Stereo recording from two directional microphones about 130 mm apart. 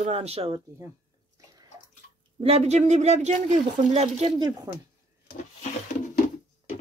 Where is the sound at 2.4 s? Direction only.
55° right (ahead or behind).